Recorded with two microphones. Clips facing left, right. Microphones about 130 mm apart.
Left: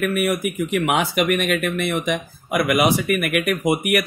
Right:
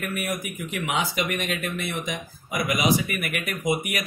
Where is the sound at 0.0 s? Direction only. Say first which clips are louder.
Left 9 dB; 70° left (ahead or behind).